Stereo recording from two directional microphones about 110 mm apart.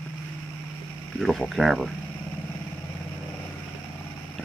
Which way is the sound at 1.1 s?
Centre (ahead or behind).